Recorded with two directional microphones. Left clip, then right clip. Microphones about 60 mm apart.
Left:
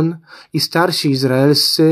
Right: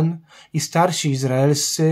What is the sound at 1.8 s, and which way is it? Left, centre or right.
Speech, left.